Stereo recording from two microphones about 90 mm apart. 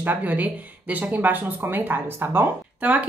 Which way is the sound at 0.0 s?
20° right (ahead or behind).